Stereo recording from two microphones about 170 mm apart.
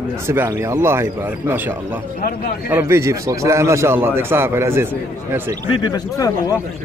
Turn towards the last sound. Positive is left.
turn(degrees=25)  # may be behind; listen again after turning